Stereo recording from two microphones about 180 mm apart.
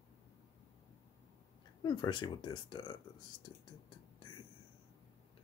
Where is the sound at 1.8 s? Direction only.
25° left (ahead or behind).